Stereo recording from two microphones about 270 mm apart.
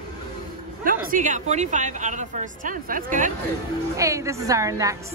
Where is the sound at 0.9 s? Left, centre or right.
Right.